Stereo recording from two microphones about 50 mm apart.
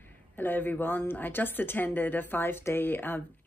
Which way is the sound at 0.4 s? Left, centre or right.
Left.